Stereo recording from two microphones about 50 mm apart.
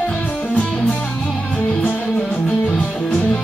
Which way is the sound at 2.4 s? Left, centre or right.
Left.